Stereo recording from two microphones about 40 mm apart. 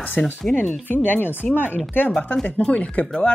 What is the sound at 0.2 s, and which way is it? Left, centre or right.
Speech, left.